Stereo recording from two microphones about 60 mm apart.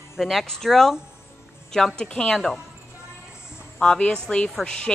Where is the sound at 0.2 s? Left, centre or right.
Centre.